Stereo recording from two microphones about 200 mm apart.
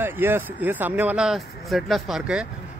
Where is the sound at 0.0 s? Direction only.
10° right (ahead or behind).